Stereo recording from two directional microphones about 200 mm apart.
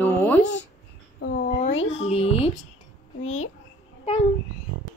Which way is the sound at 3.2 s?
90° left.